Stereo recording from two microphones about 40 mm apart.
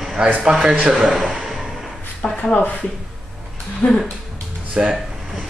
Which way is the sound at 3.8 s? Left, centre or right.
Left.